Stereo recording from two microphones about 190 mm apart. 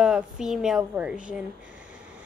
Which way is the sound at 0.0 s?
5° right (ahead or behind).